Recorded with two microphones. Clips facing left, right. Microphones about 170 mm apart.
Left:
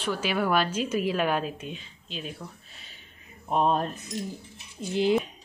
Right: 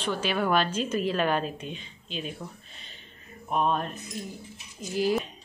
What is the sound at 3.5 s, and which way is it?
Mantra, 30° left (ahead or behind).